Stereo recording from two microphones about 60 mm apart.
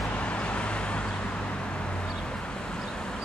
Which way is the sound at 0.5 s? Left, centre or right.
Centre.